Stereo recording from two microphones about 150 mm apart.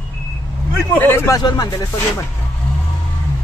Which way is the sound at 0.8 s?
15° left (ahead or behind).